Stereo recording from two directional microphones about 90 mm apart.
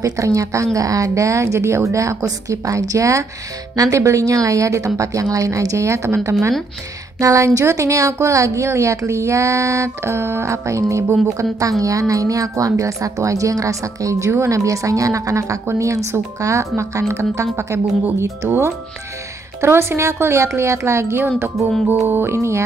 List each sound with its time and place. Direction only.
0.0 s a woman's voice: 40° right (ahead or behind)
19.6 s a woman's voice: 30° right (ahead or behind)